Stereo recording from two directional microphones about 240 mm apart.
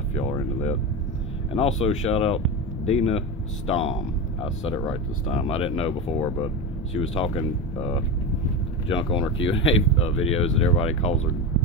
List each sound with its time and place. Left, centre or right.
0.1 s speech: left